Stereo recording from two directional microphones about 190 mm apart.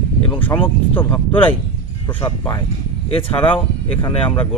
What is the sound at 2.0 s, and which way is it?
Speech, 20° left (ahead or behind).